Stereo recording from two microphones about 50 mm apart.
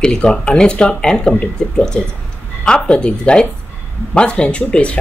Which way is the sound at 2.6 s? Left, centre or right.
Centre.